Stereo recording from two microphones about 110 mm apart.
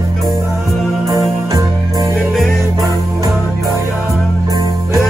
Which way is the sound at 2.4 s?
Centre (ahead or behind).